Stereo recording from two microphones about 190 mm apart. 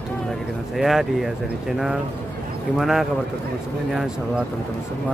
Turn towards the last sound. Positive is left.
turn(degrees=0)  # may be behind; listen again after turning